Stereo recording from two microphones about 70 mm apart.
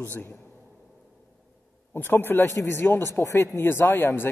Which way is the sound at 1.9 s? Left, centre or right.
Left.